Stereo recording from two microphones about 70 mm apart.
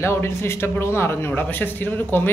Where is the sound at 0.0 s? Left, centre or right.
Left.